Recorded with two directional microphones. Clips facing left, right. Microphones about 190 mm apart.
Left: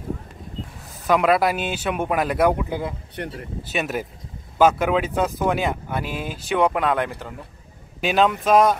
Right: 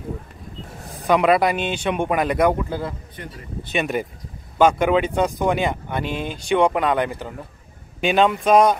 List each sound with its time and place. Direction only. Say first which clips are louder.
1.0 s speech: right 1 dB; centre (ahead or behind)
3.2 s speech: left 9 dB; 65° left (ahead or behind)
3.6 s speech: right 3 dB; 5° left (ahead or behind)